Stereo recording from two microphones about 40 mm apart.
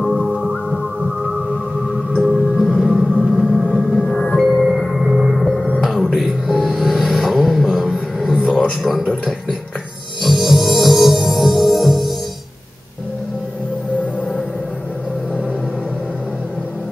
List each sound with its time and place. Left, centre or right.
0.0 s music: centre
2.5 s music: centre
3.1 s gong: centre
4.0 s music: centre
5.8 s a sound: centre
6.1 s music: centre
8.3 s a sound: centre
8.8 s a sound: centre
10.2 s music: centre